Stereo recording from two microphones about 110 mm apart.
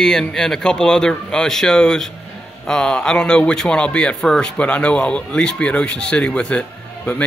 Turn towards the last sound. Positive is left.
turn(degrees=10)  # may be behind; listen again after turning